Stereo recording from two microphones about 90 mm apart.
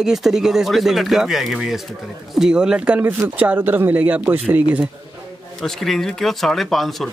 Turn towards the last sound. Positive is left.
turn(degrees=0)  # may be behind; listen again after turning